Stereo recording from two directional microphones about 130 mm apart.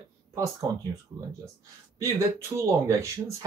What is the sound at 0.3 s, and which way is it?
Speech, 25° right (ahead or behind).